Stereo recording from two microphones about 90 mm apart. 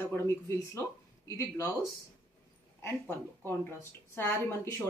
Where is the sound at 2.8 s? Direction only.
25° left (ahead or behind).